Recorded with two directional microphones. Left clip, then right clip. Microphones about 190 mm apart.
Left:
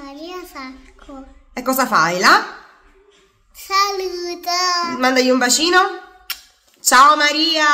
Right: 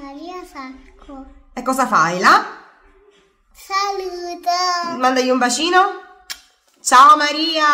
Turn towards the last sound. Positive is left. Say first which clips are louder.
# left 1 dB
turn(degrees=5)  # may be behind; listen again after turning